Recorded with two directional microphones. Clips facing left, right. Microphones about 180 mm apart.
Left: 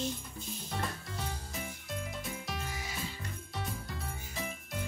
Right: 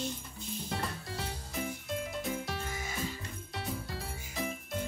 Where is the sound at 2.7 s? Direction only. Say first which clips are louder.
Right 2 dB; 50° right (ahead or behind).